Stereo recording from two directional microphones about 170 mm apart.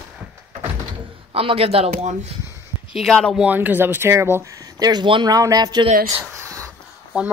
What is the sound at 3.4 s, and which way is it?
Speech, 10° right (ahead or behind).